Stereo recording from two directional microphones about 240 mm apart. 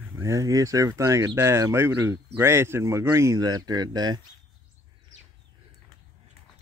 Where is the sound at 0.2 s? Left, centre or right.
Centre.